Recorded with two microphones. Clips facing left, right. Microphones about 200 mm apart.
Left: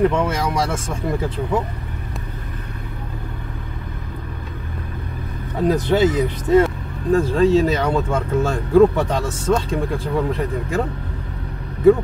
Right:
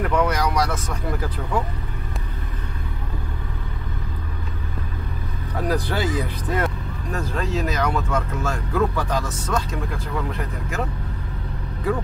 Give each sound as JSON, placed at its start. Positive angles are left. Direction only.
{"t": 0.1, "sound": "speech", "side_deg": 25}
{"t": 5.6, "sound": "speech", "side_deg": 20}